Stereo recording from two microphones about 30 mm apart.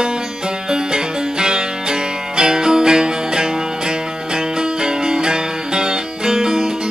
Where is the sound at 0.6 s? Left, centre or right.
Right.